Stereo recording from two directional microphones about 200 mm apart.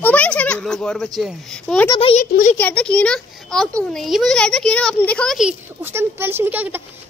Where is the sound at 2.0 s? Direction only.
30° left (ahead or behind).